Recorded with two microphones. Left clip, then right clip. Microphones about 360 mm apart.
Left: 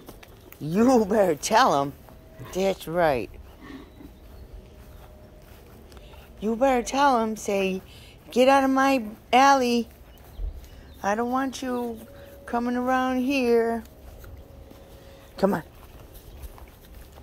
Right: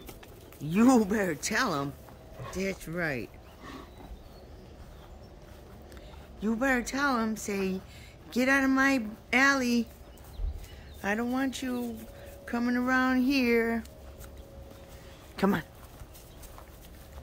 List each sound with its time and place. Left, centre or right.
0.7 s speech: centre
6.4 s speech: centre
11.0 s speech: centre
15.3 s a sound: centre